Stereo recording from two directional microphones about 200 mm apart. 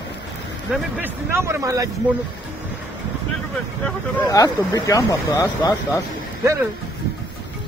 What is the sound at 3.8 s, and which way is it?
Speech, 15° left (ahead or behind).